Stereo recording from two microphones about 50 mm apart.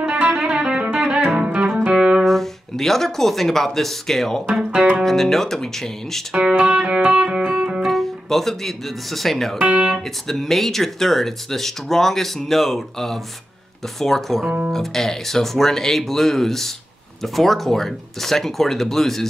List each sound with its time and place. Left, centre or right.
0.0 s music: right
2.2 s speech: centre
4.6 s music: right
5.0 s speech: centre
6.3 s music: right
7.8 s speech: centre
9.6 s speech: right
10.2 s speech: centre